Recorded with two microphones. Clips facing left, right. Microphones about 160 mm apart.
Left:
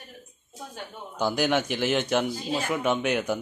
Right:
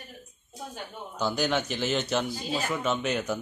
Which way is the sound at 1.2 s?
10° left (ahead or behind).